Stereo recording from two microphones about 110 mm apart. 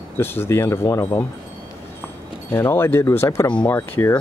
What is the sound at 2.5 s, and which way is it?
Speech, 20° left (ahead or behind).